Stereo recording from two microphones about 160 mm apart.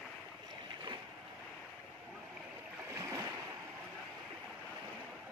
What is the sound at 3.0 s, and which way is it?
Waves, 20° right (ahead or behind).